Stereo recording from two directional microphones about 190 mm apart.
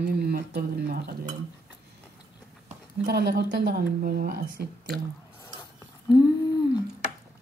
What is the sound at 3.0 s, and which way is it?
Speech, 60° right (ahead or behind).